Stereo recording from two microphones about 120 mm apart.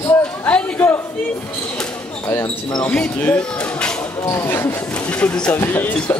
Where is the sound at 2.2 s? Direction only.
20° left (ahead or behind).